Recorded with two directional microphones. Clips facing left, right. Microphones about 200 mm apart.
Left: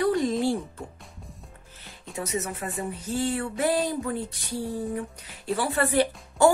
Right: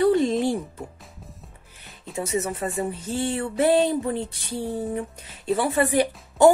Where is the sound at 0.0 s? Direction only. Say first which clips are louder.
Right 4 dB; 25° right (ahead or behind).